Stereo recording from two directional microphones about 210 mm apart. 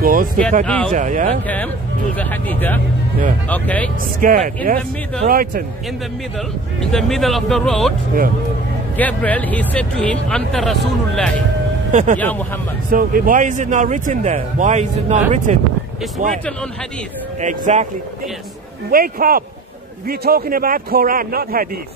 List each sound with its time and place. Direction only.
0.0 s a sound: 40° right (ahead or behind)
0.7 s speech: 5° left (ahead or behind)
0.9 s speech: 35° right (ahead or behind)
2.1 s speech: 10° left (ahead or behind)
4.2 s a man's voice: 40° right (ahead or behind)
6.9 s speech: centre (ahead or behind)
8.9 s speech: 5° left (ahead or behind)
11.9 s speech: 35° right (ahead or behind)
17.4 s speech: 35° right (ahead or behind)
18.9 s a man's voice: 45° right (ahead or behind)